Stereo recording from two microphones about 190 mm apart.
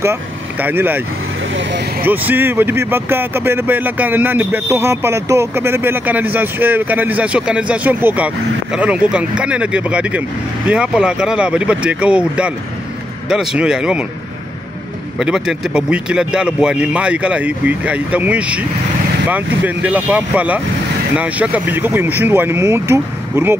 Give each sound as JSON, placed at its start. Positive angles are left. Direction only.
{"t": 0.0, "sound": "speech", "side_deg": -10}
{"t": 1.5, "sound": "speech", "side_deg": -70}
{"t": 2.0, "sound": "speech", "side_deg": -10}
{"t": 15.1, "sound": "speech", "side_deg": -5}